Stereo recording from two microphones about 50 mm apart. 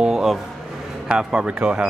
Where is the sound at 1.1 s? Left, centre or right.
Centre.